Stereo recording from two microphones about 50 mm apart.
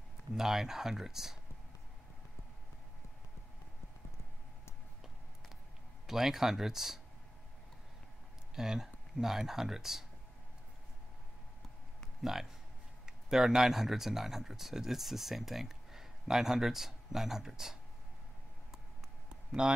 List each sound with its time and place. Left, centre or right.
0.3 s speech: centre
6.0 s speech: centre
8.5 s speech: centre
12.2 s speech: centre
19.2 s a sound: centre